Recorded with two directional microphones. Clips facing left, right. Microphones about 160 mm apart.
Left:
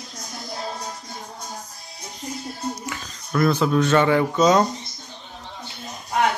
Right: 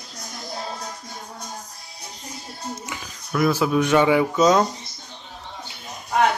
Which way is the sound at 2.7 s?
20° right (ahead or behind).